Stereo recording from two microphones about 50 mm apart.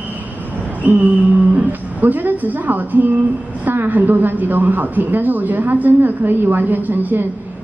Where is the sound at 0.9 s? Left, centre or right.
Right.